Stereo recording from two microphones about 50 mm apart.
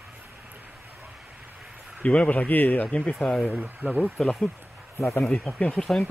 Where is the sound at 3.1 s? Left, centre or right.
Centre.